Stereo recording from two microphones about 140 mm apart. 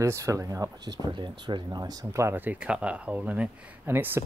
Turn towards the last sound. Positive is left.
turn(degrees=-10)  # may be behind; listen again after turning